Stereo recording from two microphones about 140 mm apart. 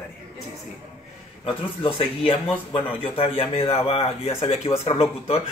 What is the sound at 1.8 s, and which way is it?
Speech, 40° left (ahead or behind).